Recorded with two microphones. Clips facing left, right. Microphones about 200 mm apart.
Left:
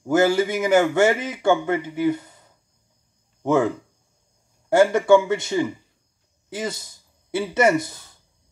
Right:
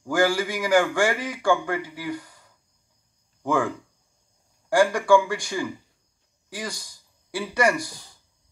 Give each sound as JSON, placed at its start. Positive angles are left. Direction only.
{"t": 0.0, "sound": "a man's voice", "side_deg": 20}